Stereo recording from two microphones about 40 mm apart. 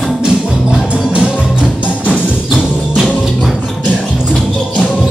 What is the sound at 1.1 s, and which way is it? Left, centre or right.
Music, right.